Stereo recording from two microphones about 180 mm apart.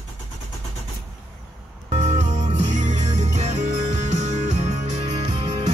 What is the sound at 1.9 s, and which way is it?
Music, 40° right (ahead or behind).